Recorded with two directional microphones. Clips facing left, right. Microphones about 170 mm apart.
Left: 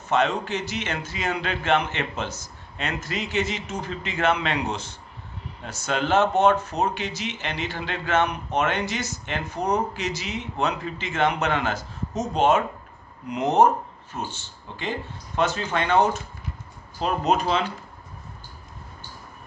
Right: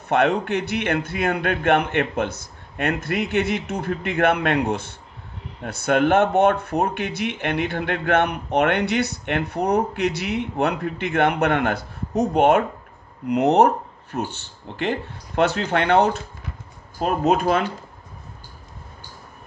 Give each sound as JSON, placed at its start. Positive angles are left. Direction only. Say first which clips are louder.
{"t": 0.1, "sound": "speech", "louder": "right 4 dB", "side_deg": -60}
{"t": 17.0, "sound": "speech", "louder": "right 3 dB", "side_deg": -50}